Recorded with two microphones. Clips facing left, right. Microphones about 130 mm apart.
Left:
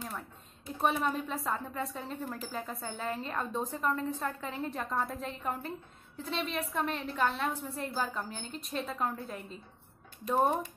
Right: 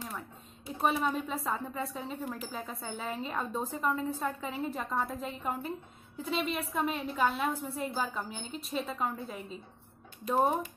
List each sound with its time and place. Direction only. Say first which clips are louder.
0.7 s a woman's voice: even; centre (ahead or behind)